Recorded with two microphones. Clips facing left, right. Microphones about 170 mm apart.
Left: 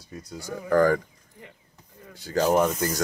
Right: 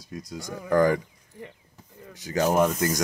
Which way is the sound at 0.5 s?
15° right (ahead or behind).